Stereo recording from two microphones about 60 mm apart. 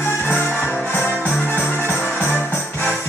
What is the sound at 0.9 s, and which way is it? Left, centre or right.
Music, left.